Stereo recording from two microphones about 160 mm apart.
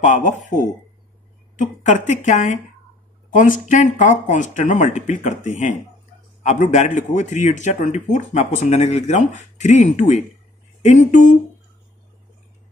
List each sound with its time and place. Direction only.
0.0 s speech: 50° left (ahead or behind)
1.6 s speech: 50° left (ahead or behind)